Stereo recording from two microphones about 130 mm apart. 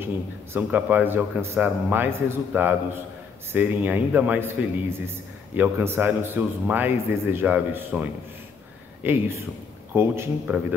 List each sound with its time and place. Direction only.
0.0 s a man's voice: 15° right (ahead or behind)